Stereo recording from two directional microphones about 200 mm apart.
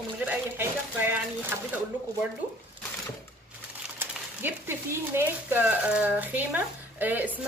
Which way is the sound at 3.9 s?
10° right (ahead or behind).